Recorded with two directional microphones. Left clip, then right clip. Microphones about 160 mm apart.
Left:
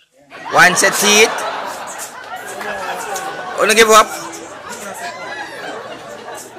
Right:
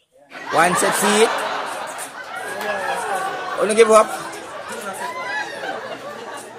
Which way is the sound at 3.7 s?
5° right (ahead or behind).